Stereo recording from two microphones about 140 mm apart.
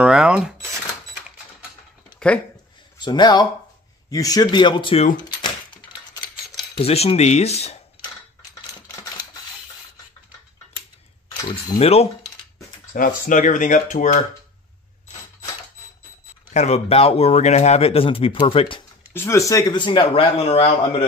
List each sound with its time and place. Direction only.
0.0 s a sound: 5° right (ahead or behind)
2.1 s a sound: 10° left (ahead or behind)
3.0 s speech: 30° left (ahead or behind)
6.8 s speech: 45° left (ahead or behind)
11.4 s speech: 30° left (ahead or behind)
11.8 s speech: 45° left (ahead or behind)
12.9 s speech: 70° left (ahead or behind)
16.5 s speech: 50° left (ahead or behind)
19.1 s speech: 20° left (ahead or behind); by 20.7 s 45° left (ahead or behind)